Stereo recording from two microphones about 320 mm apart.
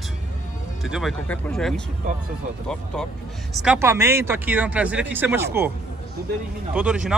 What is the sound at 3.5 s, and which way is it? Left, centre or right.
Speech, centre.